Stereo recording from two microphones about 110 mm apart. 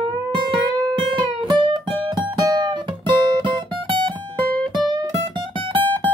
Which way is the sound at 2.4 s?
40° right (ahead or behind).